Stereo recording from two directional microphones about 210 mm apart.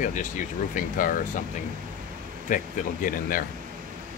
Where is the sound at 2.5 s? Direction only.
40° left (ahead or behind).